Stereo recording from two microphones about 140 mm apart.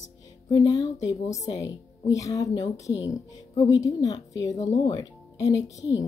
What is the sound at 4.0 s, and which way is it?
Speech, 25° left (ahead or behind).